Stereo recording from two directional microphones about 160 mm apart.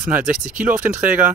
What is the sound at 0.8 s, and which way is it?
Speech, 55° right (ahead or behind).